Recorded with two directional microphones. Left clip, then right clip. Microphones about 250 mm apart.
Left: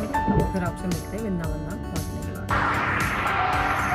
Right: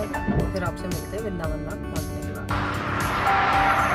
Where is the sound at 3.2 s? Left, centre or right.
Right.